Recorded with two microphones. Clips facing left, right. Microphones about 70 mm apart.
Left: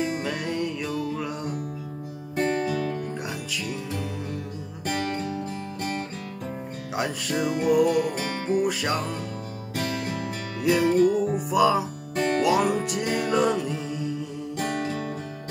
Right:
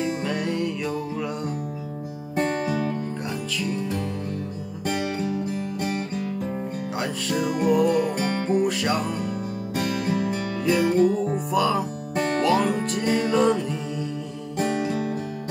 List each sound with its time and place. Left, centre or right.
0.2 s music: centre
2.3 s music: centre
4.8 s music: centre
7.0 s music: centre
9.8 s music: right
10.6 s music: centre
14.6 s music: centre